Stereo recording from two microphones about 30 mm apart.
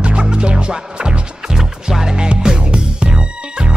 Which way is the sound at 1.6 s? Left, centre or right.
Centre.